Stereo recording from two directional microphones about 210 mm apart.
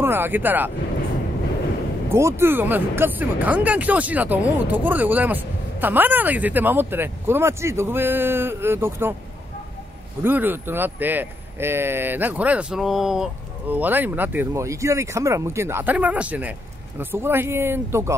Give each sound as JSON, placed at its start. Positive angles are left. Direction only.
{"t": 0.0, "sound": "speech", "side_deg": -10}
{"t": 2.0, "sound": "speech", "side_deg": -10}
{"t": 10.2, "sound": "speech", "side_deg": -10}